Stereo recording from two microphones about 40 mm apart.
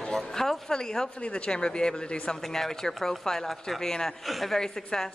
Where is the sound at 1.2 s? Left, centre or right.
Left.